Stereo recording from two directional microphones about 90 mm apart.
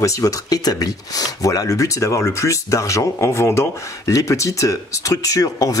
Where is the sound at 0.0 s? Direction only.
40° left (ahead or behind).